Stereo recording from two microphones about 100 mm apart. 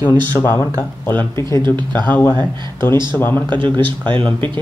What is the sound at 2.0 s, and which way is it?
Speech, 15° left (ahead or behind).